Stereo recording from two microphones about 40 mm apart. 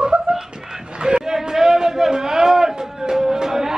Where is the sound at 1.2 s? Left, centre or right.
Centre.